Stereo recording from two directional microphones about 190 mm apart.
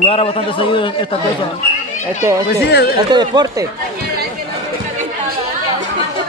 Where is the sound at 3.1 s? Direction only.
20° right (ahead or behind).